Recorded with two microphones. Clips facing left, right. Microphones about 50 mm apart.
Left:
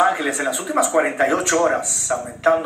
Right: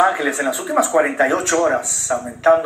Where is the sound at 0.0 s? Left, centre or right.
Centre.